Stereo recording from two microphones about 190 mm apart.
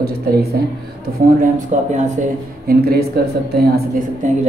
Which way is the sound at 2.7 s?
55° right (ahead or behind).